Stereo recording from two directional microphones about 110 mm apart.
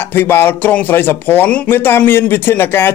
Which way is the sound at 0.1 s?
20° left (ahead or behind).